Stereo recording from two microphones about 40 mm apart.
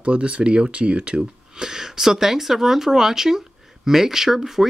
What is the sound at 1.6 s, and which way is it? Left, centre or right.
Speech, centre.